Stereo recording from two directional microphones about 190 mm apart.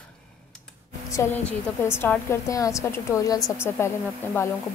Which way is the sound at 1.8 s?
10° left (ahead or behind).